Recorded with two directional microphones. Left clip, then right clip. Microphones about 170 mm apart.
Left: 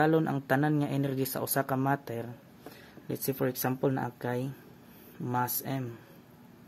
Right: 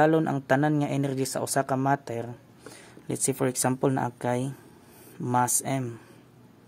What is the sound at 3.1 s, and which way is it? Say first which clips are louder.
Speech: right 4 dB; 40° right (ahead or behind).